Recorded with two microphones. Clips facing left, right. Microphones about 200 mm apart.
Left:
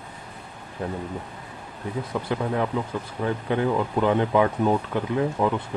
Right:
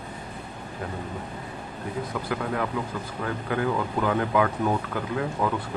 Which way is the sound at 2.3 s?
25° left (ahead or behind).